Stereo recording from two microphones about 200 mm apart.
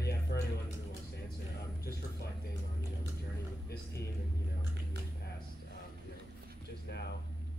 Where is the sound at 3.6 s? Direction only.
55° left (ahead or behind).